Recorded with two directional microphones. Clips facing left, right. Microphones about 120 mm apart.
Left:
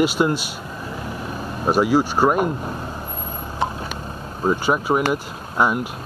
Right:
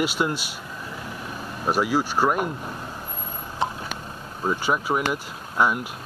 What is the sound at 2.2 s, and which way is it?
Speech, 30° left (ahead or behind).